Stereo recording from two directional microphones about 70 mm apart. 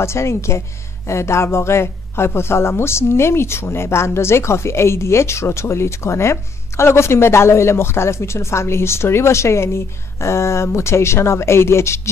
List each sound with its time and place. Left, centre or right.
0.0 s speech: left